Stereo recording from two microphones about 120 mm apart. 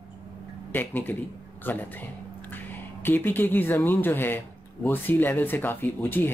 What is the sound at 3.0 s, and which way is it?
Speech, 15° left (ahead or behind).